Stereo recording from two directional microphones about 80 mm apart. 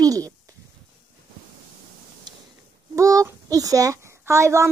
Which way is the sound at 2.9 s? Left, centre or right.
Right.